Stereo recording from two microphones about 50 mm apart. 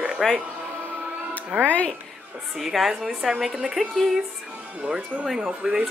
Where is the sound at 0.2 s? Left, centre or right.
Centre.